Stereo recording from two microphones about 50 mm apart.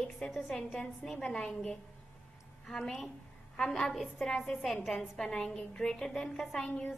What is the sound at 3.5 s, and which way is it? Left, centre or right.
Speech, centre.